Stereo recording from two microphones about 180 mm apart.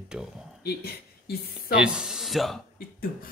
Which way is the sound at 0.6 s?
60° left (ahead or behind).